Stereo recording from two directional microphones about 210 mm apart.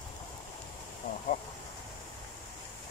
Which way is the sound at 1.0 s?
35° left (ahead or behind).